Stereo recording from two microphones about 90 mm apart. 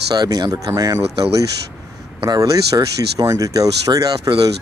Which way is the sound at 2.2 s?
40° right (ahead or behind).